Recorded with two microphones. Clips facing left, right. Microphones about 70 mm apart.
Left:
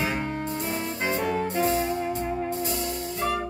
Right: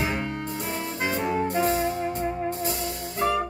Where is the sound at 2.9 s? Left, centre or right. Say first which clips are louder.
Even; right.